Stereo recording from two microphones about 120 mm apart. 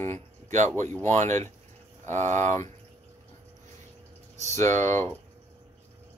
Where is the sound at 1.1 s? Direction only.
75° right (ahead or behind).